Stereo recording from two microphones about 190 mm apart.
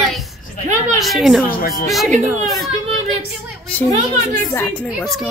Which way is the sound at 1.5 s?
50° left (ahead or behind).